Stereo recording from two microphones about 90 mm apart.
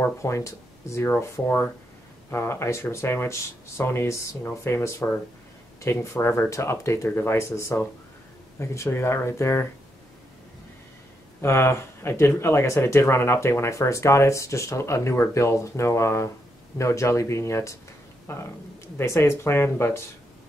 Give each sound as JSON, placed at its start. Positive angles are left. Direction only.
{"t": 0.0, "sound": "speech", "side_deg": 35}
{"t": 11.4, "sound": "speech", "side_deg": 30}